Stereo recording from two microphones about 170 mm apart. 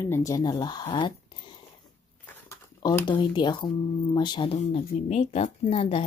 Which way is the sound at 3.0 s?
30° left (ahead or behind).